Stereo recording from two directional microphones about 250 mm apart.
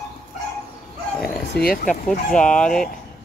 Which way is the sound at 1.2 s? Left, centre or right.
Left.